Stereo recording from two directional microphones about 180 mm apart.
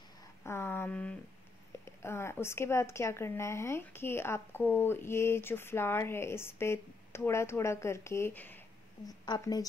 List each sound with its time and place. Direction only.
0.4 s a sound: 15° left (ahead or behind)
2.0 s speech: 15° left (ahead or behind)
9.0 s a woman's voice: 20° left (ahead or behind)